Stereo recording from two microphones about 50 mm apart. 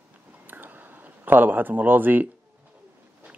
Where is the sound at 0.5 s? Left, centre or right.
Right.